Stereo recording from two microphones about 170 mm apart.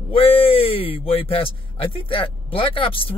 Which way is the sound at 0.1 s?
35° left (ahead or behind).